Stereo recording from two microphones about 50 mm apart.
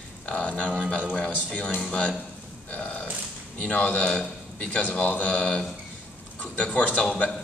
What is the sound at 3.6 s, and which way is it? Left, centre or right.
Music, left.